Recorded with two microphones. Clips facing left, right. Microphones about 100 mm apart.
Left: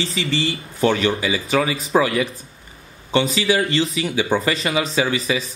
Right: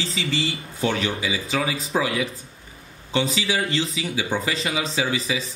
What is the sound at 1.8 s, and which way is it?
Speech, 80° left.